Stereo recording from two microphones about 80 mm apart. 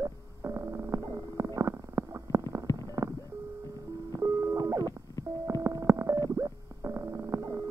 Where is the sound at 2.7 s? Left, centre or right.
Left.